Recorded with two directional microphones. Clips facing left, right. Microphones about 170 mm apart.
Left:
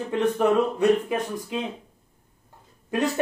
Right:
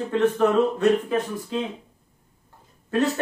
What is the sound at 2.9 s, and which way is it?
Speech, 15° left (ahead or behind).